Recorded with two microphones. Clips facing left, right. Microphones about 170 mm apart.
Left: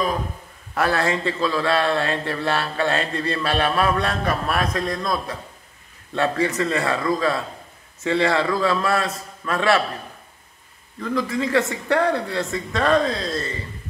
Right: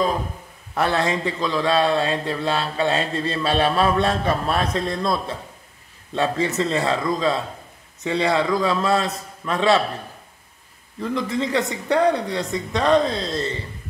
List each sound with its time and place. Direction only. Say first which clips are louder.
0.7 s a man's voice: even; 20° right (ahead or behind)
6.1 s a man's voice: even; 20° right (ahead or behind)
11.0 s a man's voice: even; 25° right (ahead or behind)